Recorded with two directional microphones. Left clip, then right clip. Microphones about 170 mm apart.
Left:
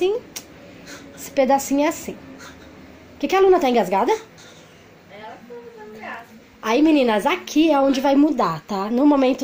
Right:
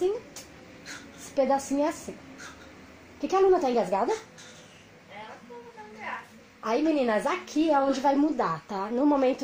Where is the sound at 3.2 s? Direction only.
15° left (ahead or behind).